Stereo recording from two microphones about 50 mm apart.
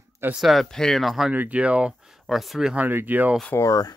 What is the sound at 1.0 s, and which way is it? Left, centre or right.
Speech, centre.